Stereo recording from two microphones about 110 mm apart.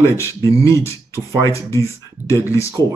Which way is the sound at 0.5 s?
30° left (ahead or behind).